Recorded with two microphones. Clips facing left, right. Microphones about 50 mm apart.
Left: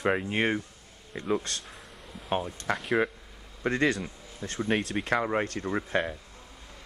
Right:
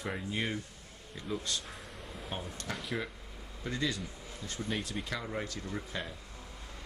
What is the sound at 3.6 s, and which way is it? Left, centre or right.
A man's voice, left.